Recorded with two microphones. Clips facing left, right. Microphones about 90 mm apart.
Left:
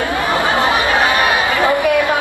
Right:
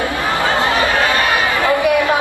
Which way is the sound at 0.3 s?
20° left (ahead or behind).